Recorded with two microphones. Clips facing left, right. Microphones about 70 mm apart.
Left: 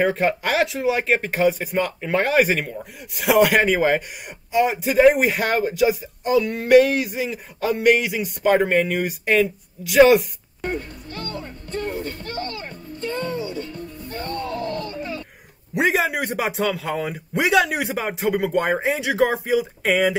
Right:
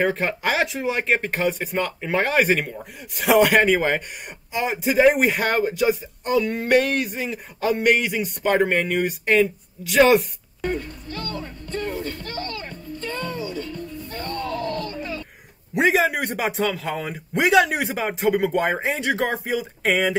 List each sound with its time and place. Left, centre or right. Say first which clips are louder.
0.0 s speech: left 2 dB; centre
10.6 s music: right 1 dB; left
14.2 s a sound: even; left
15.7 s speech: right 1 dB; centre